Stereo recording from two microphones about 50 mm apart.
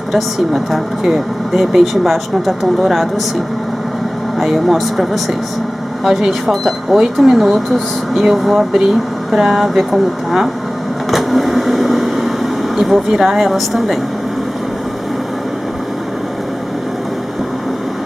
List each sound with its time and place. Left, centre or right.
0.1 s speech: centre
4.4 s speech: centre
11.1 s a sound: centre